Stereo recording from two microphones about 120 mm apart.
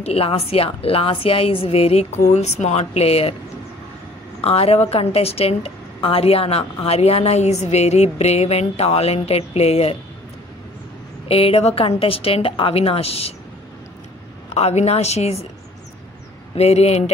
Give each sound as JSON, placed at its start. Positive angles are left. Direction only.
{"t": 0.0, "sound": "a woman's voice", "side_deg": 55}
{"t": 2.3, "sound": "a woman's voice", "side_deg": 70}
{"t": 4.4, "sound": "a woman's voice", "side_deg": 55}
{"t": 11.2, "sound": "a woman's voice", "side_deg": 55}
{"t": 14.5, "sound": "a woman's voice", "side_deg": 65}
{"t": 16.5, "sound": "a woman's voice", "side_deg": 60}